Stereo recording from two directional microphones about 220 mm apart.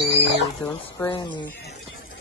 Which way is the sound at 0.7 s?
10° left (ahead or behind).